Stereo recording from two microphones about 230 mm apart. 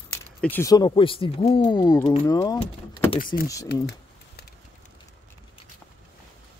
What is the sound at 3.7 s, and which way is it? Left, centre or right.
Speech, left.